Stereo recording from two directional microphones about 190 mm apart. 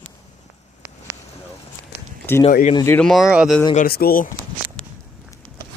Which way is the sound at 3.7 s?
55° left (ahead or behind).